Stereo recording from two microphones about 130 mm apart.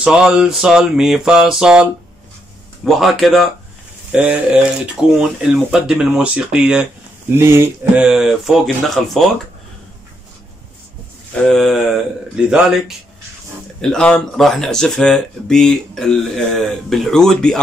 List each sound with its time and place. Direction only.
0.0 s speech: 5° right (ahead or behind)
7.3 s speech: 20° right (ahead or behind)
8.0 s speech: 5° right (ahead or behind)
11.3 s speech: 5° left (ahead or behind)
13.7 s speech: 5° left (ahead or behind)